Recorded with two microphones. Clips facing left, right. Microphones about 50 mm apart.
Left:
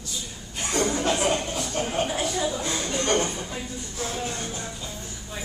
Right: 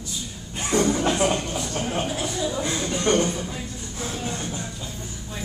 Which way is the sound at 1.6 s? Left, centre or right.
Centre.